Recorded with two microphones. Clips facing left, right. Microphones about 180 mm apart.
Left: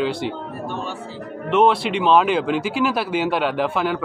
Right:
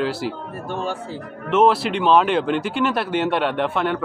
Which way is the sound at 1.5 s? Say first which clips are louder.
Even; centre (ahead or behind).